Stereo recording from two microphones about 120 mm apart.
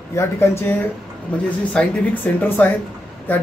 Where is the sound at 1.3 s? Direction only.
10° left (ahead or behind).